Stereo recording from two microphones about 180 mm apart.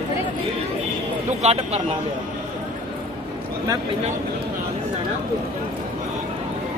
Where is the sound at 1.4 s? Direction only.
35° right (ahead or behind).